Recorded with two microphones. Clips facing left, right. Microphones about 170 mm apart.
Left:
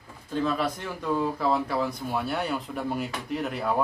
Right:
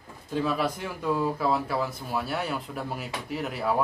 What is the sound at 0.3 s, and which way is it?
Speech, 10° right (ahead or behind).